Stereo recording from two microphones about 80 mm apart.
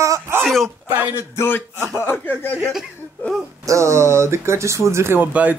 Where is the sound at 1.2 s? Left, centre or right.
Left.